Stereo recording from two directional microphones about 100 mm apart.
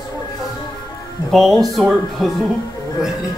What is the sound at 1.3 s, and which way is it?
Speech, centre (ahead or behind).